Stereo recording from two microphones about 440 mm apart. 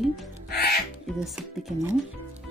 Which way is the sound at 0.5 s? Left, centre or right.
Left.